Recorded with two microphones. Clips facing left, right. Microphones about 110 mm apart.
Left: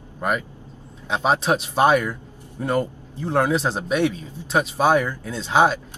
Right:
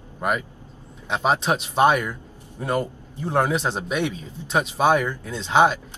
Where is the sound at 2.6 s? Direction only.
10° right (ahead or behind).